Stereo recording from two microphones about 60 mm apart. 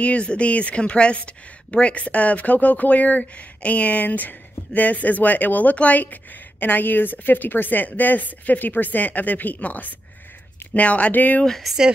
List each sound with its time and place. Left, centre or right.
0.0 s a woman's voice: centre
11.4 s speech: centre